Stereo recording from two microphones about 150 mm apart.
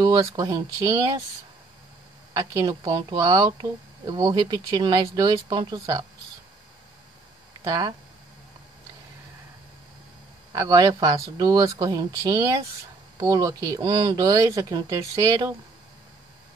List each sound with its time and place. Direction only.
0.0 s speech: 25° right (ahead or behind)
2.6 s speech: 30° right (ahead or behind)
7.6 s speech: 25° right (ahead or behind)
10.5 s speech: 25° right (ahead or behind)